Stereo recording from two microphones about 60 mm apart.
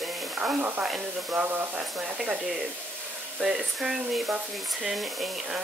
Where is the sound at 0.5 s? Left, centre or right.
Right.